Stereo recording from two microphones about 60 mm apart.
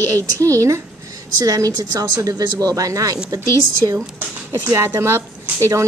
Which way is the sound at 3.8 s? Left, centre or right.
Right.